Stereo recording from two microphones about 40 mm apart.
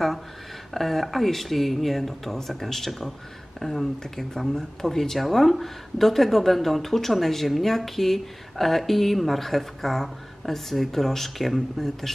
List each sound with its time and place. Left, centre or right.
0.7 s speech: centre